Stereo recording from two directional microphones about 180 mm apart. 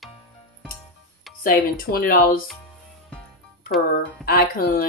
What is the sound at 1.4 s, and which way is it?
Speech, 55° left (ahead or behind).